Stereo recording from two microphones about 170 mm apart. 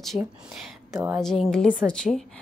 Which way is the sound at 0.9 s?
15° right (ahead or behind).